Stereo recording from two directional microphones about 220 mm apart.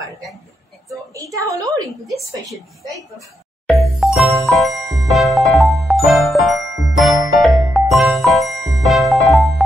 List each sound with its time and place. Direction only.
0.8 s a sound: 15° right (ahead or behind)
3.6 s music: centre (ahead or behind)
4.7 s jingle: 15° right (ahead or behind)
5.1 s music: centre (ahead or behind)